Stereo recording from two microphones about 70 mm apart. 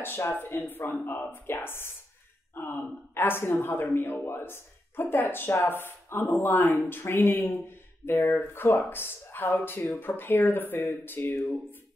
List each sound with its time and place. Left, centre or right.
0.0 s speech: left